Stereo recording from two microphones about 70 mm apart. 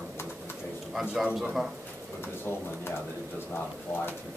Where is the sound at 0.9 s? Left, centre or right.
Centre.